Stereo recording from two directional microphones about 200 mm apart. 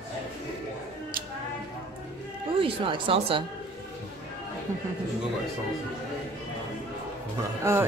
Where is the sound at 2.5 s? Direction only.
25° right (ahead or behind).